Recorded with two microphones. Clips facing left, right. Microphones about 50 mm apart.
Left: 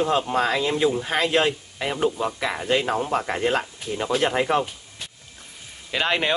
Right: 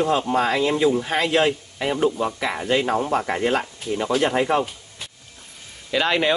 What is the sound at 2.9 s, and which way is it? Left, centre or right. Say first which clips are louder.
Speech: right 2 dB; right.